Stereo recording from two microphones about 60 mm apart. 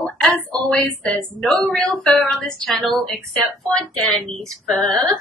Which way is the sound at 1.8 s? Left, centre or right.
Centre.